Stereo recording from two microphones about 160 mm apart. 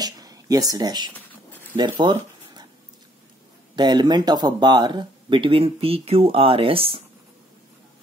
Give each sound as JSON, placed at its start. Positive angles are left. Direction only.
{"t": 0.0, "sound": "a sound", "side_deg": -25}
{"t": 1.8, "sound": "speech", "side_deg": -30}
{"t": 3.7, "sound": "speech", "side_deg": -25}